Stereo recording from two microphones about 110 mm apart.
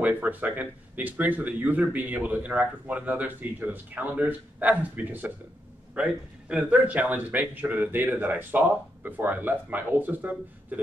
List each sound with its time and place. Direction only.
0.0 s speech: 15° right (ahead or behind)